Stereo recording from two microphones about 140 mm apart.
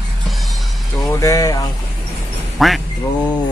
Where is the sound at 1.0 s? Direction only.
20° left (ahead or behind).